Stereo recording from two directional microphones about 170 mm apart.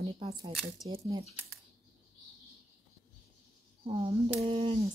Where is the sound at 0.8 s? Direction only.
35° right (ahead or behind).